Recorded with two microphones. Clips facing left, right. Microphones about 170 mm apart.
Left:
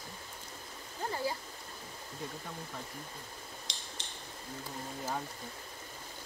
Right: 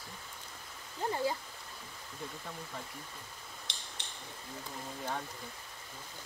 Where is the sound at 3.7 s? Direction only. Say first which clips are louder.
Left 1 dB; 65° right (ahead or behind).